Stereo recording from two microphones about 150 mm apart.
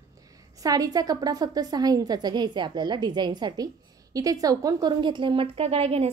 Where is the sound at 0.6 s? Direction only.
25° right (ahead or behind).